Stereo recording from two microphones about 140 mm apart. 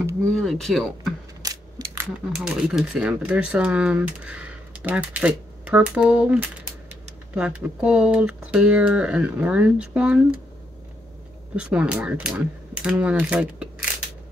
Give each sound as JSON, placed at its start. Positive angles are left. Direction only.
{"t": 0.3, "sound": "speech", "side_deg": 5}
{"t": 1.4, "sound": "a sound", "side_deg": -25}
{"t": 2.3, "sound": "speech", "side_deg": -5}
{"t": 11.5, "sound": "speech", "side_deg": -5}